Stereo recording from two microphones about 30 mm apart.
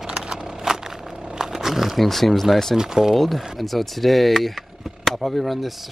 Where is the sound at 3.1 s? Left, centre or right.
Centre.